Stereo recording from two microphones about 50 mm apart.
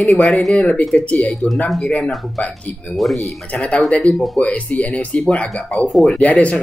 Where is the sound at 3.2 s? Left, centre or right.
Left.